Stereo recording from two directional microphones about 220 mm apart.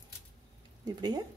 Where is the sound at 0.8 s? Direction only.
15° right (ahead or behind).